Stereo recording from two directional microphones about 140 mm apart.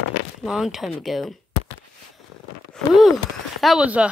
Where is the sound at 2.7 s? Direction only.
Centre (ahead or behind).